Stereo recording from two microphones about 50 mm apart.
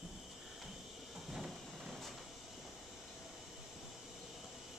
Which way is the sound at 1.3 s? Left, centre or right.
Centre.